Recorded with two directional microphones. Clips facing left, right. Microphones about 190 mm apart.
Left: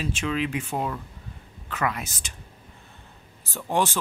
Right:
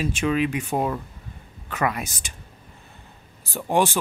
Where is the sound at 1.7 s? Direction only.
15° right (ahead or behind).